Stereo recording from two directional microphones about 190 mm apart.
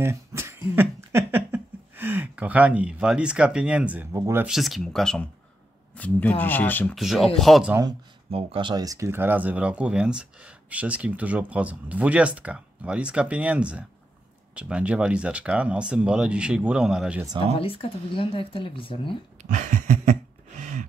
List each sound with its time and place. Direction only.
0.0 s a sound: 15° right (ahead or behind)
4.5 s speech: centre (ahead or behind)
7.0 s speech: centre (ahead or behind)
8.3 s speech: 30° right (ahead or behind); by 17.2 s 5° right (ahead or behind)
17.6 s speech: 30° left (ahead or behind)
19.5 s a sound: 40° right (ahead or behind)